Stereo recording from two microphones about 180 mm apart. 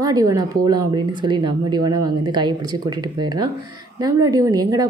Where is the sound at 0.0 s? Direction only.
20° right (ahead or behind).